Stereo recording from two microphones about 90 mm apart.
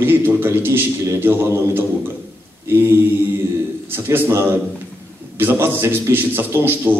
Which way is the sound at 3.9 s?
25° right (ahead or behind).